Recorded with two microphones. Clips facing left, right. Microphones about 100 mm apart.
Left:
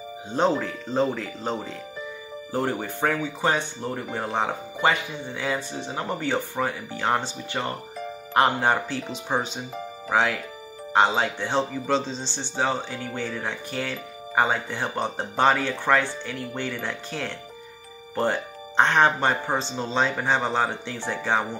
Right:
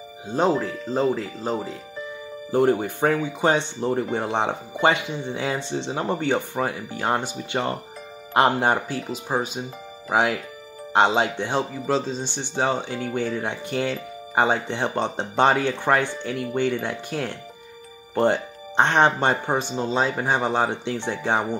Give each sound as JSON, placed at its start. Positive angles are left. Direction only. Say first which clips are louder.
{"t": 0.7, "sound": "speech", "louder": "right 2 dB", "side_deg": 0}
{"t": 2.5, "sound": "speech", "louder": "right 7 dB", "side_deg": -15}
{"t": 9.0, "sound": "speech", "louder": "right 1 dB", "side_deg": -5}
{"t": 10.1, "sound": "speech", "louder": "right 2 dB", "side_deg": -15}
{"t": 11.8, "sound": "speech", "louder": "right 1 dB", "side_deg": -5}
{"t": 12.2, "sound": "speech", "louder": "right 2 dB", "side_deg": -15}